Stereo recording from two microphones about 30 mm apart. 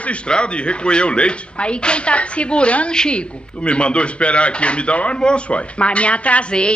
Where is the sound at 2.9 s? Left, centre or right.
Left.